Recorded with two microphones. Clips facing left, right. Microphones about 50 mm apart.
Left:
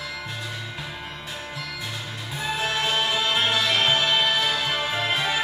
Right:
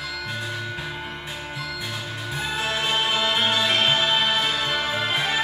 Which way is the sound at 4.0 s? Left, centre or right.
Centre.